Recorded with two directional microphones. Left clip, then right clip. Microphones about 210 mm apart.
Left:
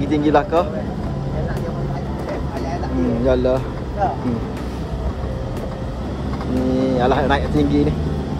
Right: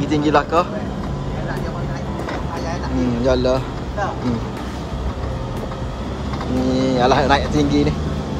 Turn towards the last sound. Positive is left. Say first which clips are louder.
# even
turn(degrees=-20)  # may be behind; listen again after turning